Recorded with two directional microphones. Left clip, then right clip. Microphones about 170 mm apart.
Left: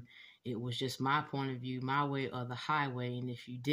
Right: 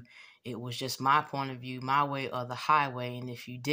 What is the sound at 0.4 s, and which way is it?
Speech, 20° left (ahead or behind).